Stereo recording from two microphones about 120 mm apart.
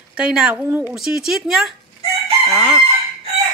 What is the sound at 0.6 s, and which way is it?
Speech, 15° right (ahead or behind).